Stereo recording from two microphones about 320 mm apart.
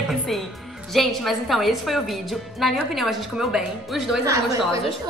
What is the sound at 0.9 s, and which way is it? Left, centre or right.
A woman's voice, centre.